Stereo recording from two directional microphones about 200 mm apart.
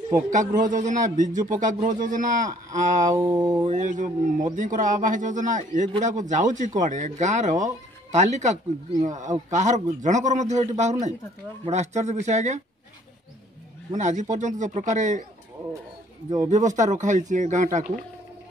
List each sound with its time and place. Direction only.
0.3 s speech: 40° right (ahead or behind)
3.1 s a sound: 20° right (ahead or behind)
3.7 s speech: 40° right (ahead or behind)
13.9 s speech: 35° right (ahead or behind)
16.4 s speech: 35° right (ahead or behind)